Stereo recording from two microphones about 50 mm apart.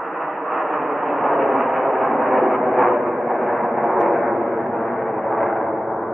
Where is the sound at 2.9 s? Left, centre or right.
Centre.